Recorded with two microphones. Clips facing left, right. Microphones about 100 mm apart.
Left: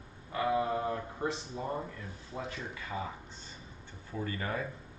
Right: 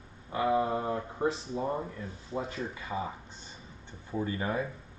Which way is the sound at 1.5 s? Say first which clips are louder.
Right 4 dB; 20° right (ahead or behind).